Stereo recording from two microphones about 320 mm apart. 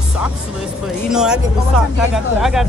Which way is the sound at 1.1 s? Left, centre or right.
Centre.